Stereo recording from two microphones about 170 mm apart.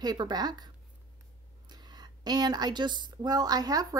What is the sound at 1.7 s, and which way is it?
A woman's voice, 25° right (ahead or behind).